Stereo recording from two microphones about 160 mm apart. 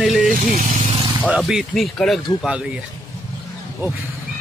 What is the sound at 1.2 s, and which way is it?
Speech, 5° right (ahead or behind).